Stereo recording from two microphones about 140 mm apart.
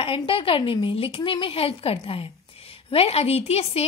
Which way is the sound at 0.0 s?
40° left (ahead or behind).